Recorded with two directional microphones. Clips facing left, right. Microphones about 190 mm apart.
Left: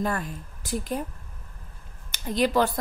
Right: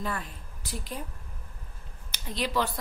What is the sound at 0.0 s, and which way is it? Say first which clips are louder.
A woman's voice: left 6 dB; 50° left (ahead or behind).